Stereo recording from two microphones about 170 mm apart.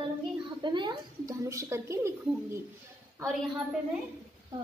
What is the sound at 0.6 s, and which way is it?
A woman's voice, 25° right (ahead or behind).